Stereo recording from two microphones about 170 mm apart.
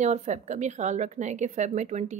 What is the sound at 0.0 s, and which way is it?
A woman's voice, 45° right (ahead or behind).